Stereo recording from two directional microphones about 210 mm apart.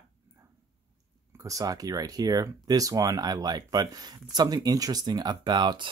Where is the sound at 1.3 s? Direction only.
15° right (ahead or behind).